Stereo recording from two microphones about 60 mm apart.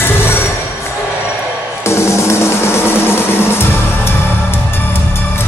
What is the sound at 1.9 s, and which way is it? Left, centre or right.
Music, left.